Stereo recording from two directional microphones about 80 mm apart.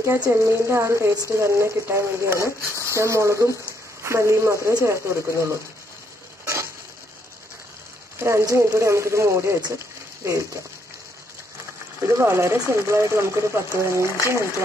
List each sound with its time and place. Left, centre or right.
0.0 s speech: right
2.6 s speech: left
3.0 s speech: right
8.2 s speech: right
12.0 s speech: right